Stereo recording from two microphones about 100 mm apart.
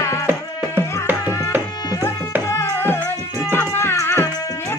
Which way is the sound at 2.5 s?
20° left (ahead or behind).